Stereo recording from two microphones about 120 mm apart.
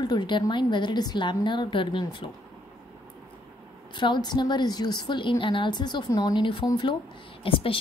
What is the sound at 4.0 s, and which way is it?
A woman's voice, 40° left (ahead or behind).